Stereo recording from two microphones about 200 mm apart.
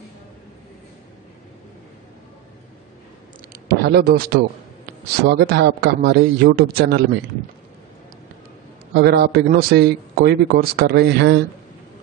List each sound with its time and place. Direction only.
3.6 s speech: 50° right (ahead or behind)
8.9 s speech: 55° right (ahead or behind)